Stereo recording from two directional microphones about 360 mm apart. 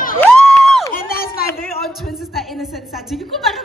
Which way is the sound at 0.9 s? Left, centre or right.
Left.